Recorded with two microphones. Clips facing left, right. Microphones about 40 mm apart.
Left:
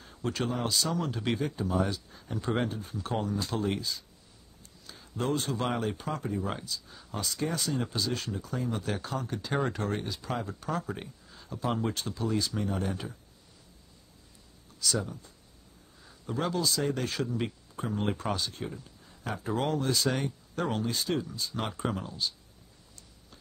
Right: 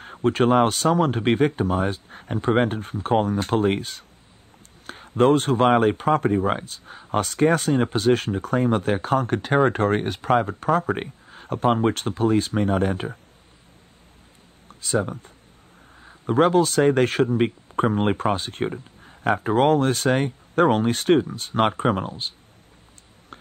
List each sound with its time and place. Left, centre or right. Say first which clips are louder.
0.0 s speech: right 13 dB; right
14.8 s speech: right 8 dB; right